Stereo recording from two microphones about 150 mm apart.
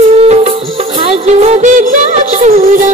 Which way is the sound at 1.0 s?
45° right (ahead or behind).